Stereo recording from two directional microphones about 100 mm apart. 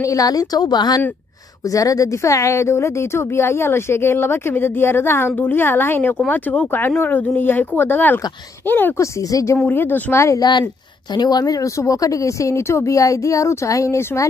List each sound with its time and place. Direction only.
0.0 s speech: 35° left (ahead or behind); by 9.0 s 20° left (ahead or behind)
9.0 s speech: 30° left (ahead or behind)
9.6 s speech: 20° left (ahead or behind)
10.4 s a woman's voice: 45° left (ahead or behind)